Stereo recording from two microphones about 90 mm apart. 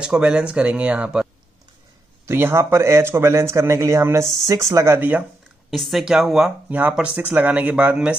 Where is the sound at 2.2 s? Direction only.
30° right (ahead or behind).